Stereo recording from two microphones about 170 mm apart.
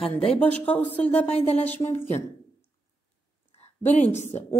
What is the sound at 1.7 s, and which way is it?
Speech, 15° left (ahead or behind).